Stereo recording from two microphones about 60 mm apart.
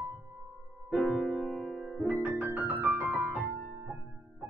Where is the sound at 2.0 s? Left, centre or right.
Right.